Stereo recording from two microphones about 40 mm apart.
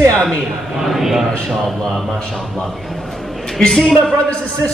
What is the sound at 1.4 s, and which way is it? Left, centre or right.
Speech, centre.